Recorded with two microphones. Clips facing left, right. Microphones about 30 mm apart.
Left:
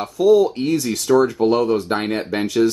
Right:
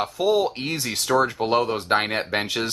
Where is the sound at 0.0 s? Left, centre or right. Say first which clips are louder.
Left 7 dB; right.